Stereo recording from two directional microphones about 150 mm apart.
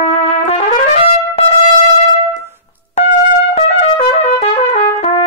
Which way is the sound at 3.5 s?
45° left (ahead or behind).